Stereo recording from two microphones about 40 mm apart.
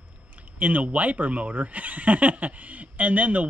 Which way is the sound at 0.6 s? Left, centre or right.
Right.